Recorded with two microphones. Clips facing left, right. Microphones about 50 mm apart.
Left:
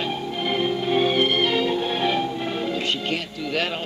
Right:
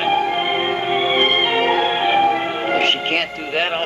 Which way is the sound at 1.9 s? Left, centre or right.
Right.